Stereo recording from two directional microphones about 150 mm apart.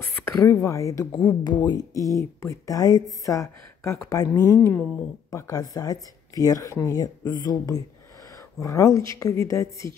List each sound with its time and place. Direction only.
0.0 s a woman's voice: 15° left (ahead or behind)